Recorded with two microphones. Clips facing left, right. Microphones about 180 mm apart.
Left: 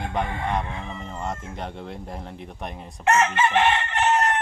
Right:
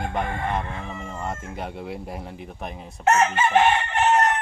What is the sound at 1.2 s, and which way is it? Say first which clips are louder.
Speech: even; 5° right (ahead or behind).